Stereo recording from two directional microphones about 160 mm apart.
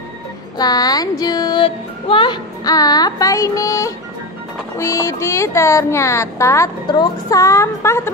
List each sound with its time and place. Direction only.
0.6 s music: 25° left (ahead or behind)
4.7 s speech: 20° left (ahead or behind)